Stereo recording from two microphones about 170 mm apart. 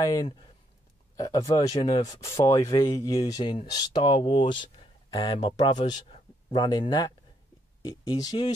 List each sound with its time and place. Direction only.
0.0 s speech: 20° left (ahead or behind)